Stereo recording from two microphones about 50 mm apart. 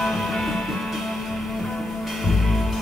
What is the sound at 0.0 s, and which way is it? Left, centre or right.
Music, centre.